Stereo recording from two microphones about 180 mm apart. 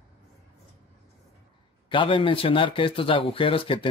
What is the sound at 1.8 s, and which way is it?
A man's voice, 30° left (ahead or behind).